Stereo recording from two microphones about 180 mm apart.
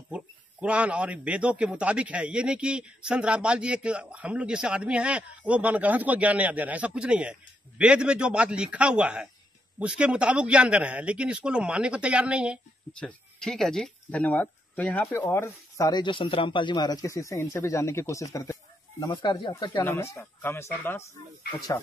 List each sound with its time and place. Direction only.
0.1 s a man's voice: 5° right (ahead or behind); by 19.5 s 25° left (ahead or behind)
19.8 s speech: 15° left (ahead or behind)